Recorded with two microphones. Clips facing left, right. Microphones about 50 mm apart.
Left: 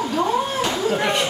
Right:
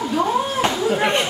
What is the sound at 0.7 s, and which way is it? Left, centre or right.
Chatter, centre.